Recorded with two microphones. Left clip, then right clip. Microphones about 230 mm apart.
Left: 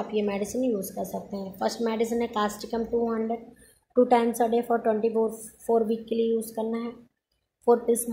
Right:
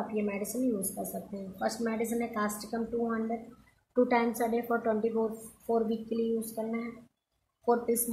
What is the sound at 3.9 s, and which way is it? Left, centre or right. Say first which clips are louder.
Speech: left 6 dB; centre.